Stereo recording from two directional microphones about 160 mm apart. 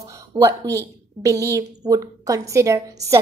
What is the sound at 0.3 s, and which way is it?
A woman's voice, 20° right (ahead or behind).